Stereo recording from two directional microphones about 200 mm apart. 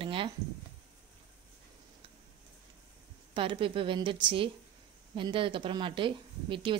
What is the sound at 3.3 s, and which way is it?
A woman's voice, 25° right (ahead or behind).